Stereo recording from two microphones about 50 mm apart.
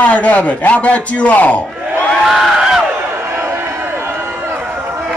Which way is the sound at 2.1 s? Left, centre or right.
Centre.